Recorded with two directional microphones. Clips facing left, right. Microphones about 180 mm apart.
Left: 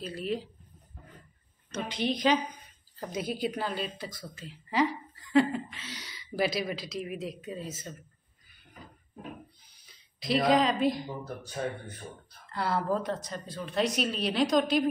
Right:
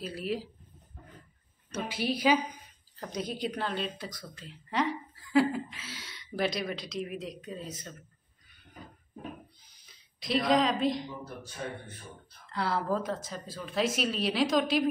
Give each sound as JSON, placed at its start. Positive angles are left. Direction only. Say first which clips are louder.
{"t": 0.0, "sound": "a woman's voice", "louder": "left 1 dB", "side_deg": -5}
{"t": 1.7, "sound": "a woman's voice", "louder": "left 1 dB", "side_deg": -5}
{"t": 3.0, "sound": "a woman's voice", "louder": "left 2 dB", "side_deg": 5}
{"t": 10.2, "sound": "a woman's voice", "louder": "left 2 dB", "side_deg": 0}
{"t": 11.1, "sound": "speech", "louder": "left 3 dB", "side_deg": 40}
{"t": 12.5, "sound": "a woman's voice", "louder": "left 1 dB", "side_deg": 0}